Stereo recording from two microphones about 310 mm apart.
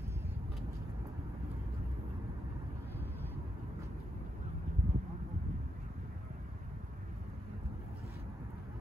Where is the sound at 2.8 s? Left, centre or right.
Centre.